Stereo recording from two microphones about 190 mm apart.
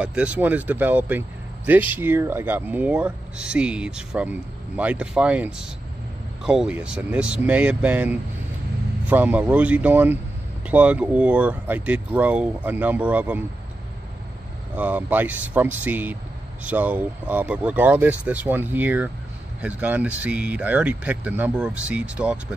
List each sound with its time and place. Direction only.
0.0 s speech: 5° right (ahead or behind)
14.8 s speech: 10° right (ahead or behind)